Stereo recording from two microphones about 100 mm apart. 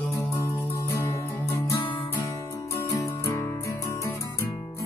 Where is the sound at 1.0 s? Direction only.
30° left (ahead or behind).